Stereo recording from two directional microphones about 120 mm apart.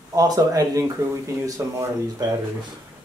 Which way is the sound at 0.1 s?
30° right (ahead or behind).